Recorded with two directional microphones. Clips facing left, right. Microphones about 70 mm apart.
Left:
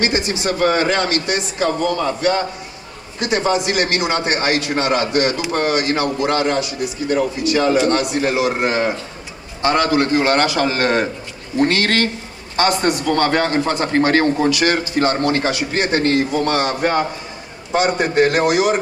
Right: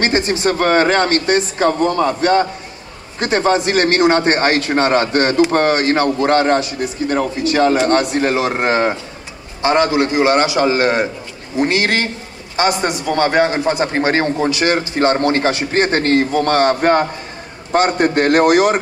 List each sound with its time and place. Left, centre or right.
0.0 s a man's voice: right
9.6 s a man's voice: right